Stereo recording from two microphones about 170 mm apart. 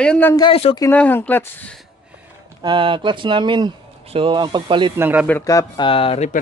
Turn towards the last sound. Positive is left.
turn(degrees=35)  # may be behind; listen again after turning